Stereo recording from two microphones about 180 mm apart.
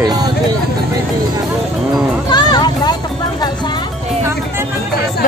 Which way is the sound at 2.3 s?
25° left (ahead or behind).